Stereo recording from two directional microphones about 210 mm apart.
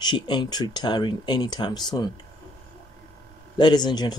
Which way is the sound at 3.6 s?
20° left (ahead or behind).